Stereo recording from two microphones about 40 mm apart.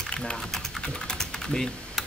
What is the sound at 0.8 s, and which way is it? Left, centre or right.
Typing, centre.